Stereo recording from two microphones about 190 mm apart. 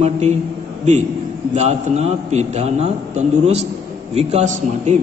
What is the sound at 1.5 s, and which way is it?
A man's voice, 35° right (ahead or behind).